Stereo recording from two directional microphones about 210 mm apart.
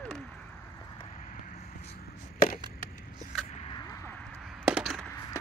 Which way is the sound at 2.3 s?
40° left (ahead or behind).